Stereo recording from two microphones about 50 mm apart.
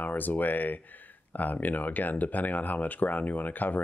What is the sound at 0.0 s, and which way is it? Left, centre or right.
Speech, left.